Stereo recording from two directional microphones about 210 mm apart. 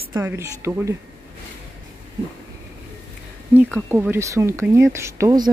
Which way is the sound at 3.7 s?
10° right (ahead or behind).